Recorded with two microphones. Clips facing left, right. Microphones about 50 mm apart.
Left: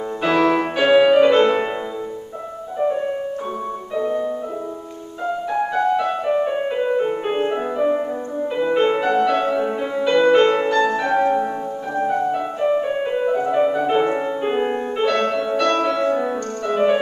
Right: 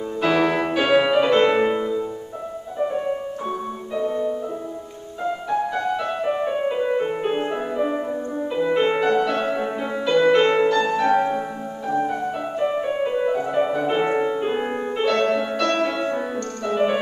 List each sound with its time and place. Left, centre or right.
0.2 s music: centre
4.0 s music: left
5.5 s music: centre
6.5 s music: centre
6.9 s music: centre
7.3 s music: centre
9.4 s music: centre
14.0 s music: centre
14.4 s music: centre
15.2 s music: centre
15.9 s music: centre
16.2 s music: centre